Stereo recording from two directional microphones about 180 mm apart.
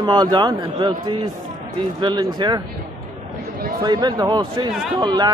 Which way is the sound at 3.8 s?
25° right (ahead or behind).